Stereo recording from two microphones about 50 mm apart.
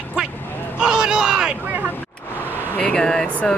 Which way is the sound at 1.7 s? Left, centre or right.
Right.